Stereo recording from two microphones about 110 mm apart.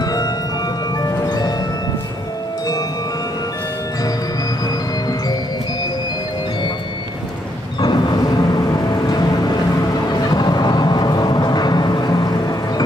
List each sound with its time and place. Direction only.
0.0 s music: 35° left (ahead or behind)
7.8 s vehicle: 40° left (ahead or behind)